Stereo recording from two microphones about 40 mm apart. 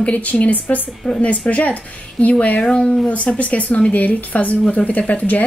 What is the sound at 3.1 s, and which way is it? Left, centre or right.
Speech, left.